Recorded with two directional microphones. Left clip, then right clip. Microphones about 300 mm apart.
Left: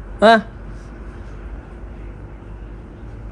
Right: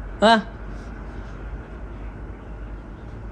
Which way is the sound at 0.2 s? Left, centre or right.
Centre.